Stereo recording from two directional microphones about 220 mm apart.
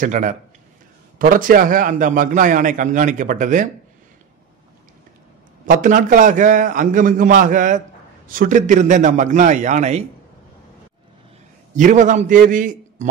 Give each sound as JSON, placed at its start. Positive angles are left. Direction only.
{"t": 0.0, "sound": "a man's voice", "side_deg": -35}
{"t": 5.7, "sound": "a man's voice", "side_deg": -35}
{"t": 11.7, "sound": "a man's voice", "side_deg": -35}